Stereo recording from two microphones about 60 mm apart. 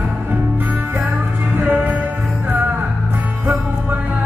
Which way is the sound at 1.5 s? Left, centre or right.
Right.